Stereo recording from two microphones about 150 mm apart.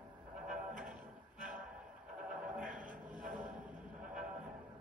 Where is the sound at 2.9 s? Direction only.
10° right (ahead or behind).